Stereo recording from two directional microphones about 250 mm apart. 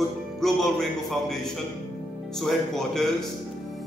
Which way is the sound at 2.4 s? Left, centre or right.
Centre.